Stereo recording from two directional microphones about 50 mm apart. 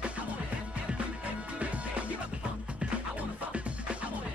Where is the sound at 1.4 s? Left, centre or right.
Right.